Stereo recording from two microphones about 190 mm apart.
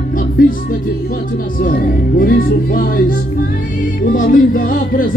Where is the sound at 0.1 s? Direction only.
45° left (ahead or behind).